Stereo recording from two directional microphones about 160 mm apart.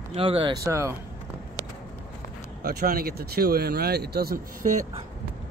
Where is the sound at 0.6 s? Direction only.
15° right (ahead or behind).